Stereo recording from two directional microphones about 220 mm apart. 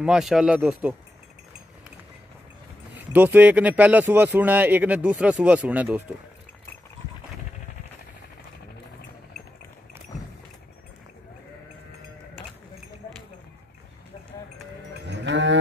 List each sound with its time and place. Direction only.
0.0 s speech: centre (ahead or behind)
2.9 s speech: 5° right (ahead or behind)
15.0 s livestock: 55° right (ahead or behind)